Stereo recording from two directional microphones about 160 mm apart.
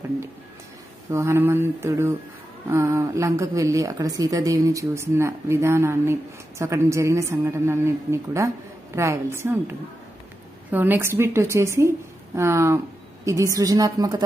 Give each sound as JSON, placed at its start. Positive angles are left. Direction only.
{"t": 1.1, "sound": "a woman's voice", "side_deg": -15}
{"t": 10.7, "sound": "a woman's voice", "side_deg": -10}